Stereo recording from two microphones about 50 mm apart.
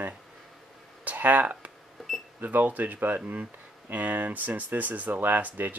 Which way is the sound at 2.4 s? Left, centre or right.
Right.